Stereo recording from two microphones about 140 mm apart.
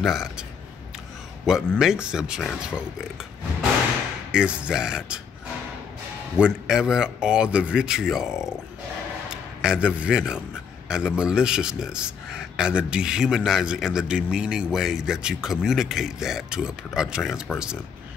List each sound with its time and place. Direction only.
0.0 s a man's voice: 5° right (ahead or behind)
4.3 s a man's voice: 5° right (ahead or behind)
6.3 s a man's voice: 5° right (ahead or behind)